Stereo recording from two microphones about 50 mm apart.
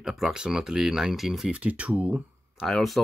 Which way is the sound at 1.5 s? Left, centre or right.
Right.